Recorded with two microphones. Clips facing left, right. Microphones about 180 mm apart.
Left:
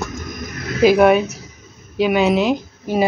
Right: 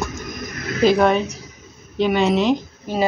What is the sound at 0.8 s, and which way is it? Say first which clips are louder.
A woman's voice: left 4 dB; 10° left (ahead or behind).